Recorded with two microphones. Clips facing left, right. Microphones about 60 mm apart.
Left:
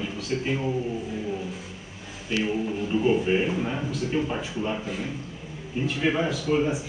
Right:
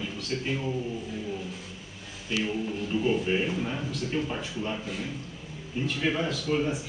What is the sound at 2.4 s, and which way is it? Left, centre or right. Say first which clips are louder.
Speech: left 4 dB; centre.